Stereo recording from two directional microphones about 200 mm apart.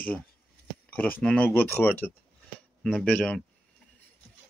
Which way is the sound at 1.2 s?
5° left (ahead or behind).